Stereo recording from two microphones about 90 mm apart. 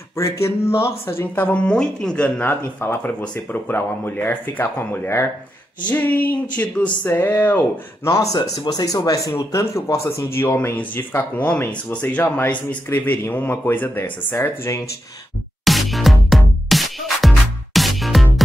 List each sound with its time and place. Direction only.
0.2 s speech: 30° left (ahead or behind); by 2.5 s 15° left (ahead or behind)
2.8 s speech: 25° left (ahead or behind)
5.9 s a sound: 20° left (ahead or behind)
7.1 s speech: 25° left (ahead or behind)
8.1 s speech: 35° left (ahead or behind)
15.6 s music: centre (ahead or behind)